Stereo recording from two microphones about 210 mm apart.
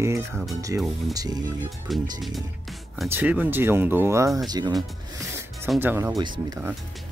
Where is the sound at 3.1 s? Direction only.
10° right (ahead or behind).